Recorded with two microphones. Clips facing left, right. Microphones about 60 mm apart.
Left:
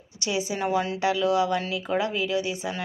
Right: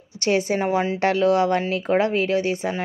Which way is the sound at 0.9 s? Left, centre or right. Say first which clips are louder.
Right 6 dB; right.